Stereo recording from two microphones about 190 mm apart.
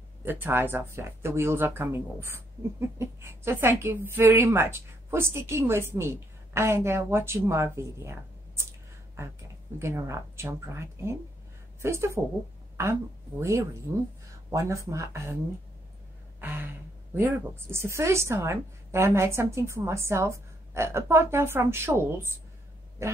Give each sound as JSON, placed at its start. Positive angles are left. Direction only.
{"t": 0.2, "sound": "a woman's voice", "side_deg": -10}
{"t": 9.8, "sound": "a woman's voice", "side_deg": -15}
{"t": 13.4, "sound": "a woman's voice", "side_deg": -15}
{"t": 16.3, "sound": "a woman's voice", "side_deg": -10}